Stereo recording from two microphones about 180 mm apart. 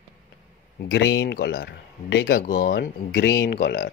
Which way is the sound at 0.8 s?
70° left (ahead or behind).